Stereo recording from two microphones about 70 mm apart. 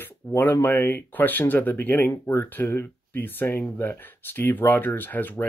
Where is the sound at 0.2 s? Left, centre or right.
Left.